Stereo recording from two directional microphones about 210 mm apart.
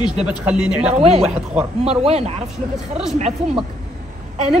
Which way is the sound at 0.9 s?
30° right (ahead or behind).